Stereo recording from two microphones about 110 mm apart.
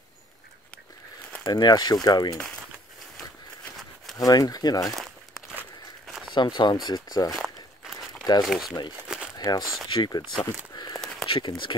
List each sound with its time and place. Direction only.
1.4 s speech: 40° left (ahead or behind)
4.2 s speech: 35° left (ahead or behind)
6.3 s speech: 45° left (ahead or behind)
7.3 s crumpling: centre (ahead or behind)
8.2 s speech: 35° left (ahead or behind)
8.5 s speech: centre (ahead or behind)
9.1 s crumpling: 5° right (ahead or behind)
9.8 s speech: 45° left (ahead or behind)
11.2 s speech: 50° left (ahead or behind)